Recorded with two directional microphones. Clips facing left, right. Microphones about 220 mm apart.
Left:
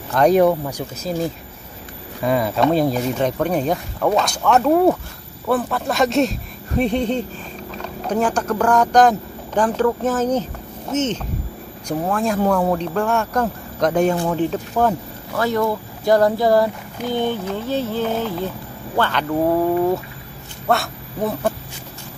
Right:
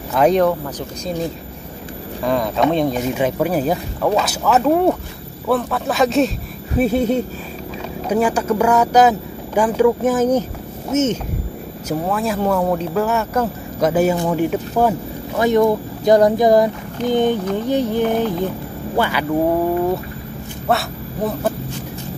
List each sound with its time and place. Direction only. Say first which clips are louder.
0.1 s speech: even; centre (ahead or behind)
0.4 s speech: left 1 dB; 10° left (ahead or behind)
2.2 s speech: even; 5° left (ahead or behind)
20.6 s speech: even; centre (ahead or behind)